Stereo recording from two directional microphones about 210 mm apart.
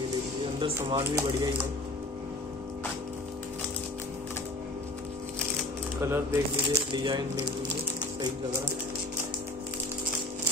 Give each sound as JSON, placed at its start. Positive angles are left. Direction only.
{"t": 0.6, "sound": "speech", "side_deg": -20}
{"t": 6.0, "sound": "speech", "side_deg": -10}